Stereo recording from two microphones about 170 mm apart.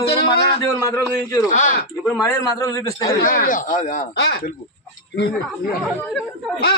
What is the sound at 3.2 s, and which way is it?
Speech, 55° left (ahead or behind).